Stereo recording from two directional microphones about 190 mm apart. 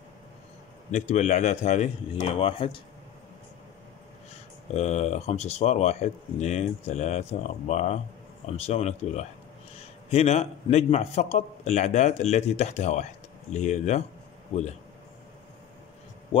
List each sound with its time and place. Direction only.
0.9 s speech: 35° left (ahead or behind)
4.7 s speech: 35° left (ahead or behind)